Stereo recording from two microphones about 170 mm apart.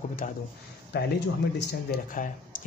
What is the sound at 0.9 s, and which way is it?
Speech, 75° left (ahead or behind).